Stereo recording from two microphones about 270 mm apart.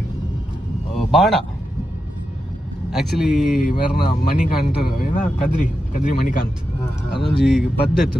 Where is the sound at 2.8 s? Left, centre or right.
Centre.